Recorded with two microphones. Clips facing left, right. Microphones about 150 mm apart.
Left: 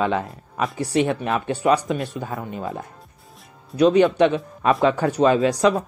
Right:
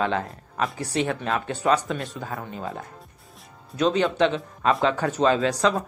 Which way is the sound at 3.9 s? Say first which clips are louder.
Left 4 dB; 15° left (ahead or behind).